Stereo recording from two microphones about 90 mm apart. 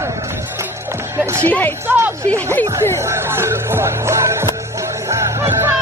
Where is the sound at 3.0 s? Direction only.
30° right (ahead or behind).